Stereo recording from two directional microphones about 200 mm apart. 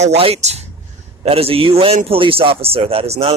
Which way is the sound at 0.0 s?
30° right (ahead or behind).